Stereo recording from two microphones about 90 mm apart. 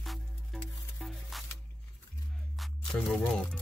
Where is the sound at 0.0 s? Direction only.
Centre (ahead or behind).